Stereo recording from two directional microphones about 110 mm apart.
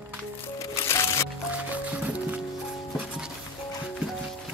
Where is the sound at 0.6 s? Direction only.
25° left (ahead or behind).